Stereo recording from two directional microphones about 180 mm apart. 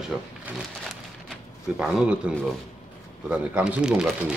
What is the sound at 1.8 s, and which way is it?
Speech, 5° right (ahead or behind).